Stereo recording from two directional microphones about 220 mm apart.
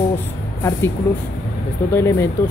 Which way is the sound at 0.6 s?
10° left (ahead or behind).